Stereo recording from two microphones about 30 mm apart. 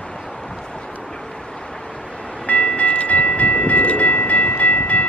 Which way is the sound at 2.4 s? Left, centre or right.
Left.